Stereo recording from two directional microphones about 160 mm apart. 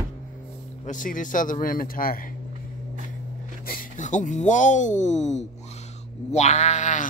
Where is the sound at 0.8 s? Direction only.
55° left (ahead or behind).